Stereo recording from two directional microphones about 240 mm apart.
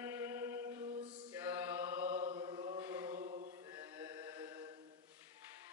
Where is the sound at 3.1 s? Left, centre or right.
Right.